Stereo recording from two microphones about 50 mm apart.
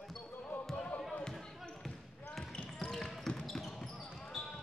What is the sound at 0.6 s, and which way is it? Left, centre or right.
Basketball bounce, centre.